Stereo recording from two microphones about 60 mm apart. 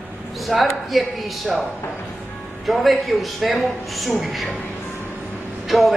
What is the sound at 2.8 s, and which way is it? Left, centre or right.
Speech, centre.